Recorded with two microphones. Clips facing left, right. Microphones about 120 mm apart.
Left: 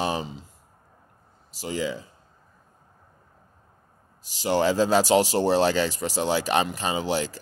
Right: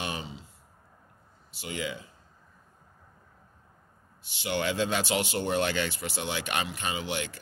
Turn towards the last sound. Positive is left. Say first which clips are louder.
# left 7 dB
turn(degrees=35)  # may be behind; listen again after turning